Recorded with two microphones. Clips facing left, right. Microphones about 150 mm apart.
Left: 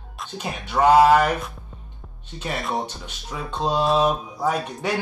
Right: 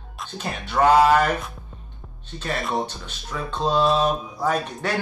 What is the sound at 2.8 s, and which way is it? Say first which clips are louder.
Speech: even; 15° left (ahead or behind).